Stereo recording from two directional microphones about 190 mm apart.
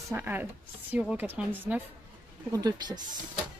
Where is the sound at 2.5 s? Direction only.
20° right (ahead or behind).